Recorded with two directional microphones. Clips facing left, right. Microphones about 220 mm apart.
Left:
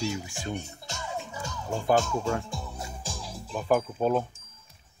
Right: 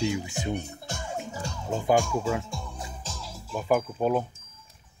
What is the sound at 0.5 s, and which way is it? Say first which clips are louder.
Music: right 3 dB; 55° right (ahead or behind).